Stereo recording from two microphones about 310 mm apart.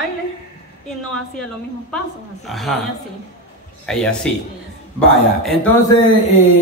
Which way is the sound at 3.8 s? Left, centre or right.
Centre.